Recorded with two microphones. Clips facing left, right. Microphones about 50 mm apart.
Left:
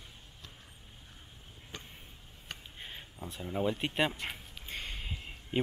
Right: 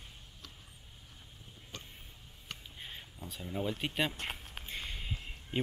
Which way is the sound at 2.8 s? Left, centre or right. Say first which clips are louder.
Left 1 dB; centre.